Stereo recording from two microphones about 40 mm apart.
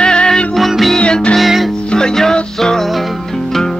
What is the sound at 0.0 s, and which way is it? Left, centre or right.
Music, left.